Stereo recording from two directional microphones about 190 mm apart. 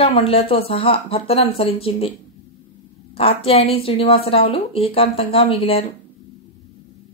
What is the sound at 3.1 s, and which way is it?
Speech, 30° left (ahead or behind).